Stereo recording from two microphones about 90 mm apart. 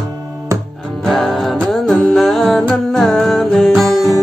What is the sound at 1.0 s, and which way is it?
Music, centre (ahead or behind).